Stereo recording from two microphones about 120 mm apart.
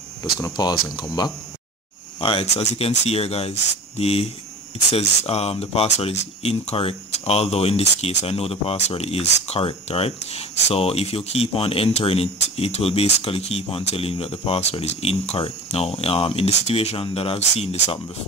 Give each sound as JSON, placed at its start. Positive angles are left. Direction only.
{"t": 0.2, "sound": "speech", "side_deg": 30}
{"t": 2.1, "sound": "speech", "side_deg": 50}
{"t": 2.4, "sound": "speech", "side_deg": 65}